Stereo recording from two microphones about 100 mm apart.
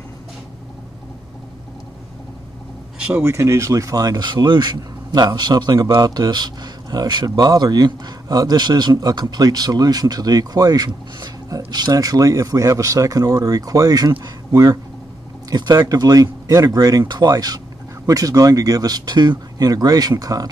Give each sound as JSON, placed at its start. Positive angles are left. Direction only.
{"t": 3.2, "sound": "speech", "side_deg": -25}